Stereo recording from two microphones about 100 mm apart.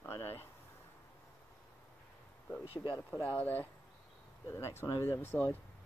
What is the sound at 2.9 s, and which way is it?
Speech, 15° left (ahead or behind).